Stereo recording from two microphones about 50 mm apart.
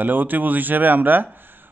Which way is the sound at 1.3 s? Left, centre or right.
Right.